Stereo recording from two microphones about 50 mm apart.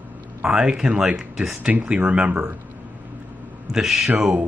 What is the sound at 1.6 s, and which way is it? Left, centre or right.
Speech, right.